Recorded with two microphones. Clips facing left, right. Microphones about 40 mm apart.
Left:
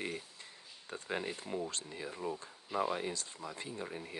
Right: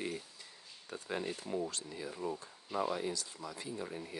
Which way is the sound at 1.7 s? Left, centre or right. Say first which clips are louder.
Even; left.